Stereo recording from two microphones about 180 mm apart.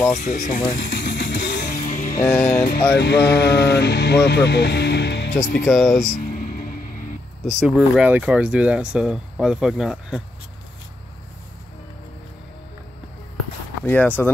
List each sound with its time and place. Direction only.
0.1 s speech: 40° left (ahead or behind)
0.7 s music: 80° left
1.7 s music: 50° left (ahead or behind)
2.2 s speech: 5° left (ahead or behind)
3.0 s speech: 70° left (ahead or behind)
5.4 s speech: 45° left (ahead or behind)
5.7 s speech: centre (ahead or behind)
7.6 s speech: 5° right (ahead or behind)
13.8 s speech: 10° left (ahead or behind)